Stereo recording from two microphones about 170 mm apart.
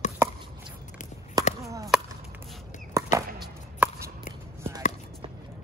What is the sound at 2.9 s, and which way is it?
Chop, 15° right (ahead or behind).